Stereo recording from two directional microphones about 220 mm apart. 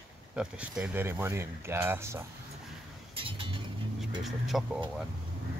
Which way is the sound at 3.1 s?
25° right (ahead or behind).